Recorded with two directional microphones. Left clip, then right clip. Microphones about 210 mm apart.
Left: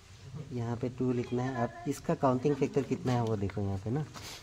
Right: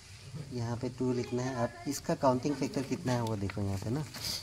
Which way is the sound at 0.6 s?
45° left (ahead or behind).